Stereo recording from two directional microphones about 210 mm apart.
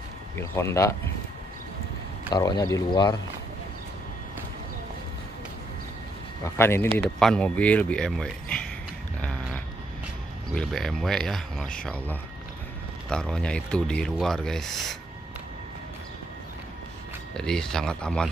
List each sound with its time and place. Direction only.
0.4 s speech: 10° left (ahead or behind)
2.3 s speech: 20° left (ahead or behind)
6.4 s speech: 10° left (ahead or behind)
9.2 s a sound: 5° left (ahead or behind)
10.5 s speech: centre (ahead or behind)
17.4 s speech: 5° left (ahead or behind)